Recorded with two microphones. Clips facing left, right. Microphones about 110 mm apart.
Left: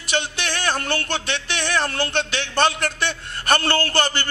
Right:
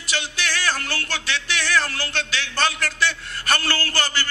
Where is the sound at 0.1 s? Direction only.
25° left (ahead or behind).